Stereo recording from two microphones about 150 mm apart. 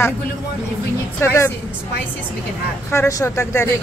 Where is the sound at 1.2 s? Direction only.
15° left (ahead or behind).